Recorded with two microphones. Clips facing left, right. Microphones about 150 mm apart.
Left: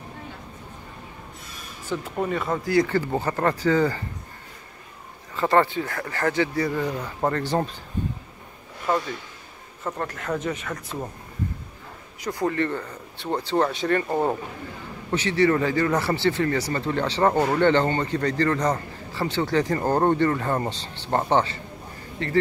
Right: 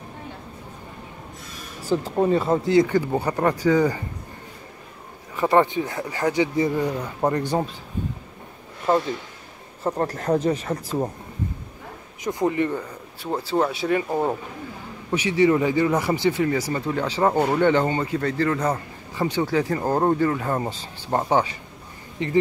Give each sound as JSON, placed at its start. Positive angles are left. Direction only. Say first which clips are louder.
{"t": 1.9, "sound": "speech", "louder": "right 6 dB", "side_deg": -30}
{"t": 5.3, "sound": "speech", "louder": "right 2 dB", "side_deg": -15}
{"t": 8.9, "sound": "speech", "louder": "right 4 dB", "side_deg": -30}
{"t": 12.2, "sound": "speech", "louder": "right 2 dB", "side_deg": -20}